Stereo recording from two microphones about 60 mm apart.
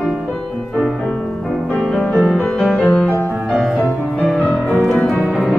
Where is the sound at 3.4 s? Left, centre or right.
Centre.